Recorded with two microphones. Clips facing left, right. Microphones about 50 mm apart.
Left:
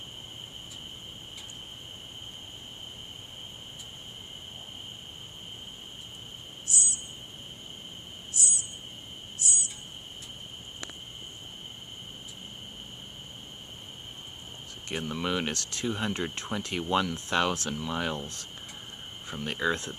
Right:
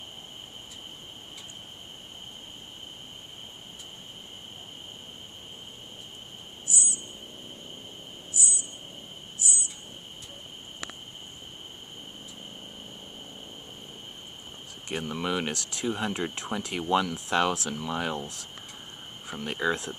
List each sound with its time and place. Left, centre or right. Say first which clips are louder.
6.7 s cricket: right 1 dB; left
8.3 s cricket: right 1 dB; left
14.9 s speech: right 1 dB; centre
19.2 s speech: right 1 dB; centre